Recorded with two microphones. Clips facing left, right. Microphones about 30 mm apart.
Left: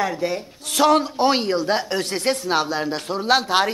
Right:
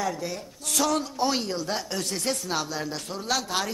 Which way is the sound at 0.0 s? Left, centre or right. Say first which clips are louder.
Left 7 dB; left.